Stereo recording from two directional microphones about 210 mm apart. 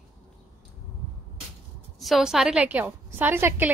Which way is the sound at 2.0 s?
Centre (ahead or behind).